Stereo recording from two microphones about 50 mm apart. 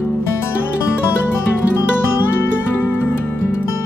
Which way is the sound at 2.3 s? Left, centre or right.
Left.